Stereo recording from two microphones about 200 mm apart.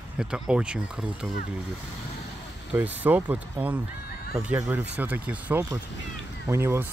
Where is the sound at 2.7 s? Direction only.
10° right (ahead or behind).